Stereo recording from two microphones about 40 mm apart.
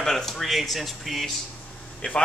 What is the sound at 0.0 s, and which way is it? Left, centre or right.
Speech, centre.